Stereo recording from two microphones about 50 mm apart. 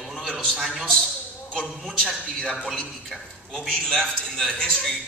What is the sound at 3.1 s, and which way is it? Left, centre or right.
A man's voice, centre.